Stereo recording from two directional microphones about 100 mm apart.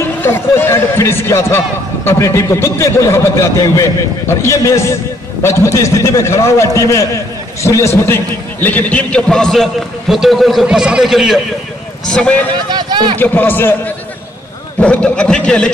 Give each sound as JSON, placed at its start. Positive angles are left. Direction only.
{"t": 0.2, "sound": "a man's voice", "side_deg": 20}
{"t": 12.1, "sound": "a man's voice", "side_deg": 10}
{"t": 12.6, "sound": "a sound", "side_deg": -45}
{"t": 13.2, "sound": "a man's voice", "side_deg": 20}